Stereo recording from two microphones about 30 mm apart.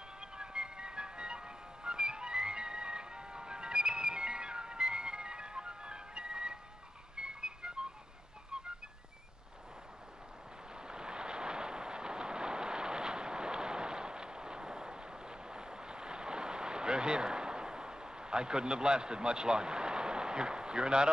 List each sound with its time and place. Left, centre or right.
0.2 s music: right
10.7 s vehicle: right